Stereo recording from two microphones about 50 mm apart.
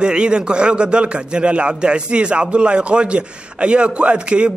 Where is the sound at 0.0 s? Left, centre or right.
Centre.